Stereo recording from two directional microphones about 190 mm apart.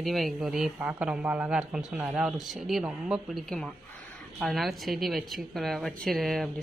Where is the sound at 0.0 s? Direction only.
Centre (ahead or behind).